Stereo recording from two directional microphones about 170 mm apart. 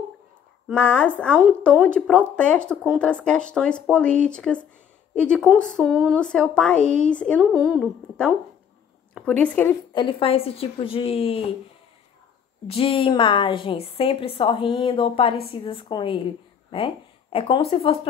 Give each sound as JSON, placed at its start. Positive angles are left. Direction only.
{"t": 0.7, "sound": "a woman's voice", "side_deg": 10}
{"t": 9.9, "sound": "a woman's voice", "side_deg": 30}
{"t": 12.6, "sound": "a woman's voice", "side_deg": 30}